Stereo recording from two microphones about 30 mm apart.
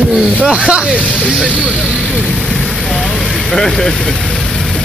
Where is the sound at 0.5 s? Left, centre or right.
Right.